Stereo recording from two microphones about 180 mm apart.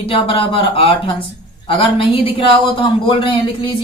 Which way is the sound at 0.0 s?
30° left (ahead or behind).